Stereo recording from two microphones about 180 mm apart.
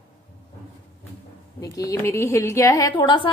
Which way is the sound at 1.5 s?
20° left (ahead or behind).